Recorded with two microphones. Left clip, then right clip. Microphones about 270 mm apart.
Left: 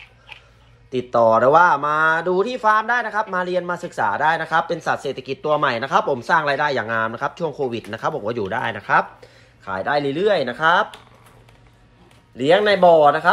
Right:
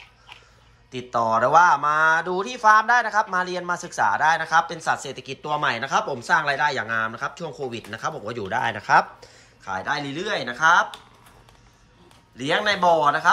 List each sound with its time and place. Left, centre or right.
0.8 s speech: centre
12.4 s speech: centre